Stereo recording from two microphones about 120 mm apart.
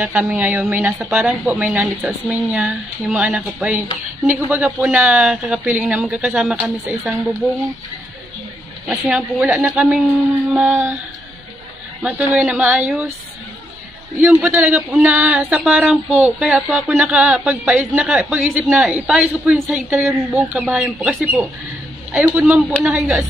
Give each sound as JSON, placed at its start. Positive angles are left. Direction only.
{"t": 0.0, "sound": "speech", "side_deg": -15}
{"t": 8.8, "sound": "speech", "side_deg": -10}
{"t": 12.0, "sound": "speech", "side_deg": -10}
{"t": 14.2, "sound": "speech", "side_deg": -15}